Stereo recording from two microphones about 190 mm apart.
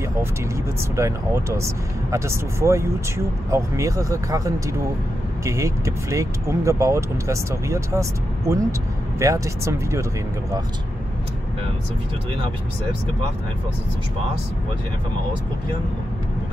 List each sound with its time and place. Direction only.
0.9 s speech: 15° right (ahead or behind)
5.4 s speech: 15° right (ahead or behind)